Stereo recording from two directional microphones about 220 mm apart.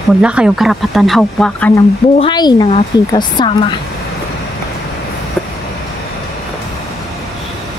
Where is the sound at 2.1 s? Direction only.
20° left (ahead or behind).